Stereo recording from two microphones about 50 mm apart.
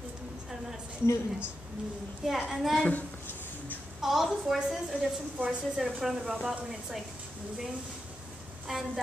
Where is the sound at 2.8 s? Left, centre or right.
Left.